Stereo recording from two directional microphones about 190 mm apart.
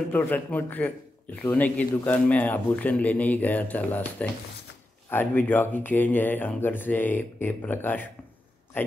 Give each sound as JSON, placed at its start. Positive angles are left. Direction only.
{"t": 0.1, "sound": "a man's voice", "side_deg": 10}